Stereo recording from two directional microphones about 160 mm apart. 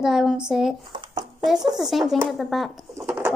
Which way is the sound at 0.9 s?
30° right (ahead or behind).